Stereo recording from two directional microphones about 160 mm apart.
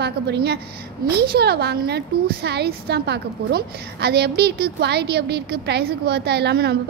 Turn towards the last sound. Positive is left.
turn(degrees=-90)